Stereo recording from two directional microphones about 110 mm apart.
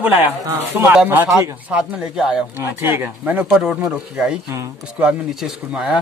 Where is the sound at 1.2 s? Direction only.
Centre (ahead or behind).